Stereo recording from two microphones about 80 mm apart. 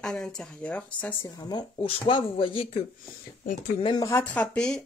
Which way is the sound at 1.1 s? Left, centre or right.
Left.